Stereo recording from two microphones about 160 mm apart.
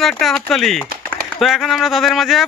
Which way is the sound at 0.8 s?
70° right (ahead or behind).